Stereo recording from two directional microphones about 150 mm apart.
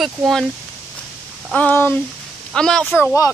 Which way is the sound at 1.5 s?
10° left (ahead or behind).